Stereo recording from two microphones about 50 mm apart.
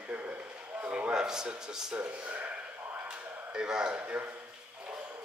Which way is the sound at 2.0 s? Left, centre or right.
Right.